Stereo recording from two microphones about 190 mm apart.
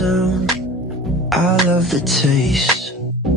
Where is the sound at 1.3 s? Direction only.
Centre (ahead or behind).